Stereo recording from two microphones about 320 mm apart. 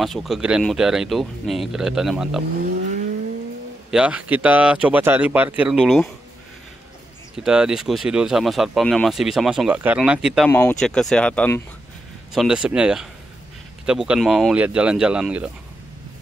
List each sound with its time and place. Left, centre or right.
0.0 s speech: centre
2.6 s vehicle: right
3.9 s speech: centre
7.3 s speech: centre